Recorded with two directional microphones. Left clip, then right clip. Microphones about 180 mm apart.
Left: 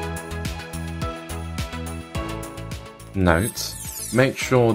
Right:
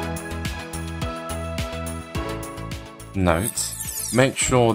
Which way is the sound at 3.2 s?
15° left (ahead or behind).